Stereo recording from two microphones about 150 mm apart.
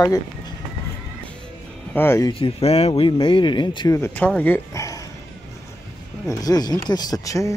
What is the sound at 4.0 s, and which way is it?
Speech, 10° left (ahead or behind).